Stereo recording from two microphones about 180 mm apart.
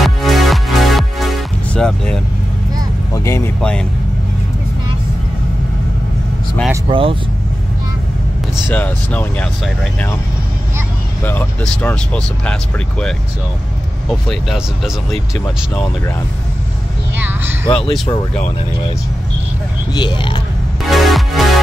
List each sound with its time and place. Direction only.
0.0 s music: centre (ahead or behind)
3.1 s speech: 15° left (ahead or behind)
6.9 s speech: 30° right (ahead or behind)
8.6 s speech: 10° left (ahead or behind)
11.6 s speech: 5° left (ahead or behind)
17.2 s speech: 10° right (ahead or behind)
17.6 s speech: 5° left (ahead or behind)
19.9 s speech: 25° left (ahead or behind)
20.8 s music: centre (ahead or behind)